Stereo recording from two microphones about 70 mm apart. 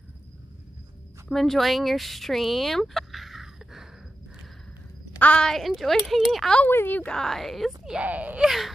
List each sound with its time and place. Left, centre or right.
1.3 s speech: centre
5.4 s speech: centre
6.7 s a woman's voice: left
7.0 s speech: centre
7.8 s speech: centre
8.1 s speech: right
8.5 s speech: centre